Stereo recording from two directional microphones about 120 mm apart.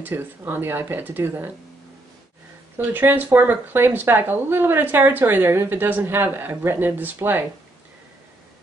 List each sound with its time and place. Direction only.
0.0 s speech: 20° right (ahead or behind)
2.9 s speech: 15° right (ahead or behind)